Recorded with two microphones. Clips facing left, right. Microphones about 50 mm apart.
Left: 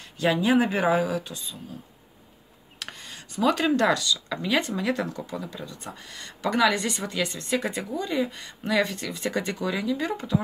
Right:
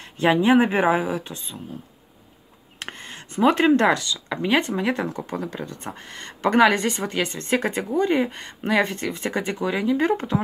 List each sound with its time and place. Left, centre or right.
0.0 s speech: right
2.8 s speech: right
5.2 s speech: right